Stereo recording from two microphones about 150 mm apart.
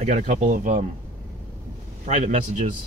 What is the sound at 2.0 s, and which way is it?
Speech, 50° right (ahead or behind).